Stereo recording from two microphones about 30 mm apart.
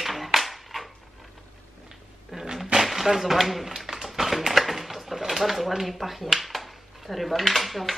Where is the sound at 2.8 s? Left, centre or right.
Centre.